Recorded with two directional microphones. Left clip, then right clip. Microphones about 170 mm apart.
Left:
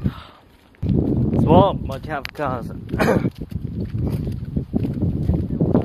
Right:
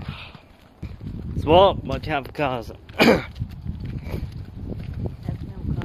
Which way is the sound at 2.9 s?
20° right (ahead or behind).